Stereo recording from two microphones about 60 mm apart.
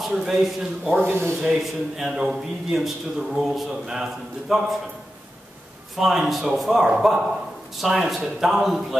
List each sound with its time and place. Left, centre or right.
0.1 s a man's voice: centre
1.0 s speech: right
1.4 s a man's voice: centre
5.9 s a man's voice: centre